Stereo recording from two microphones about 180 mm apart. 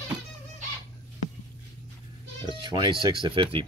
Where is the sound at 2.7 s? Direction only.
25° right (ahead or behind).